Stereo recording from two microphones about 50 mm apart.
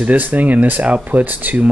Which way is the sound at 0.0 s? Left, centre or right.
Right.